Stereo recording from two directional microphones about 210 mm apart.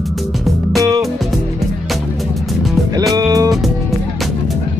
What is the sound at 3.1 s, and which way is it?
Music, 15° right (ahead or behind).